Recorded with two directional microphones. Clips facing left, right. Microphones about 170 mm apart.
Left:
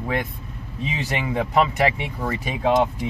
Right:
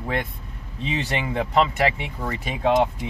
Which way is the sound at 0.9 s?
10° left (ahead or behind).